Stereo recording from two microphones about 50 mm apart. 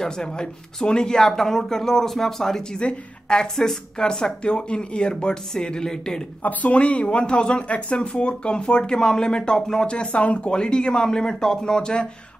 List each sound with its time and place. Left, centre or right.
0.0 s speech: centre
2.8 s a woman's voice: left
6.4 s speech: left